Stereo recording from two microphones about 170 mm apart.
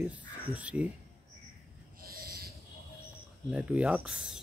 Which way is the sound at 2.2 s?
60° right (ahead or behind).